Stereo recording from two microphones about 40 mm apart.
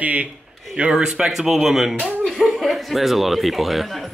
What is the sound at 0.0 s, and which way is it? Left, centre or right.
Speech, right.